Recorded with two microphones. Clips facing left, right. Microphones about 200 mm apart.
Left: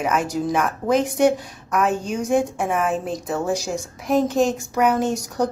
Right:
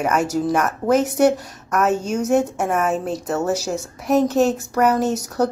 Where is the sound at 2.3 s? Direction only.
Centre (ahead or behind).